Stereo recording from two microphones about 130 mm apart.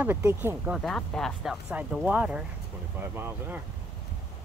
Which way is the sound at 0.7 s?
5° left (ahead or behind).